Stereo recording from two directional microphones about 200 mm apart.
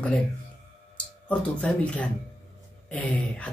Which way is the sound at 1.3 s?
5° left (ahead or behind).